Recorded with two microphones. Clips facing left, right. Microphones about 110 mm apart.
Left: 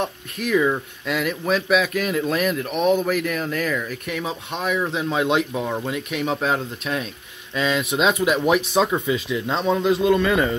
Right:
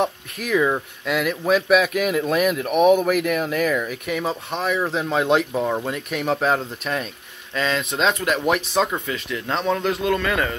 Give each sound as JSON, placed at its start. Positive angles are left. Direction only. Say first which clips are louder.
{"t": 0.0, "sound": "speech", "louder": "right 2 dB", "side_deg": 0}
{"t": 10.0, "sound": "speech", "louder": "left 3 dB", "side_deg": 20}